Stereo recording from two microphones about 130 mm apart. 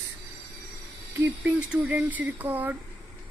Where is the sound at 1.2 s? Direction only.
10° right (ahead or behind).